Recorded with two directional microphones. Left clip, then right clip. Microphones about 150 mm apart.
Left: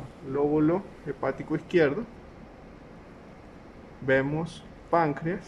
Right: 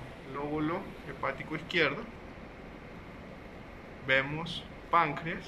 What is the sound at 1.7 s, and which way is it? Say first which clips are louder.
Speech: left 5 dB; 80° left.